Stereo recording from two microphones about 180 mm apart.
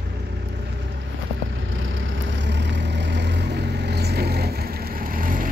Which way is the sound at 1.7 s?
90° right.